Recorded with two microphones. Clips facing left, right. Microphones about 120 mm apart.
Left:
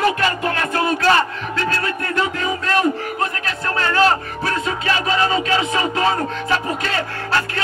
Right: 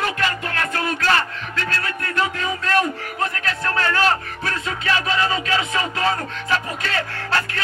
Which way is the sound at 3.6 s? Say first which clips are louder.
Left 3 dB; 25° left (ahead or behind).